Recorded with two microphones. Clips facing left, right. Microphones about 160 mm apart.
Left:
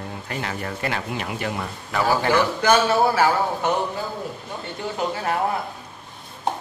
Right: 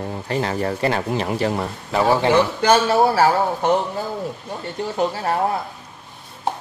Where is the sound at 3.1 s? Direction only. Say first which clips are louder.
Right 3 dB; 35° right (ahead or behind).